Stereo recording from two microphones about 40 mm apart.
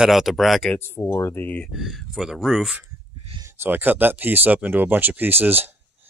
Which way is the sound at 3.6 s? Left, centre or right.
Right.